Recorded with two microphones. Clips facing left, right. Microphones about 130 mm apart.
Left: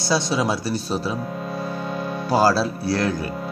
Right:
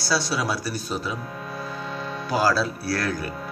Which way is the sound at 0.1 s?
20° left (ahead or behind).